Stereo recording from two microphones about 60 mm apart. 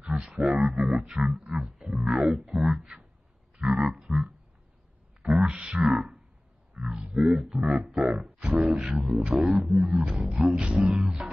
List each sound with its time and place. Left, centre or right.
0.0 s a sound: centre
0.5 s speech: centre
3.5 s grunt: centre
5.2 s speech: centre
6.8 s speech: centre
8.5 s a sound: right
8.7 s speech: centre